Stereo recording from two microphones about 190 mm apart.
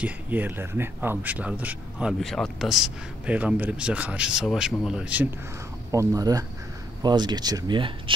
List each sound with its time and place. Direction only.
0.0 s speech: 10° right (ahead or behind)
5.9 s speech: 20° right (ahead or behind)